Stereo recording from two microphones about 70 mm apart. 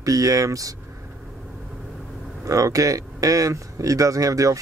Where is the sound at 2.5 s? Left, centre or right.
Right.